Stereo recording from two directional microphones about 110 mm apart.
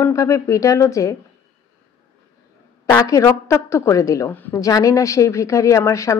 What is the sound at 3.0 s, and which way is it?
A woman's voice, 30° left (ahead or behind).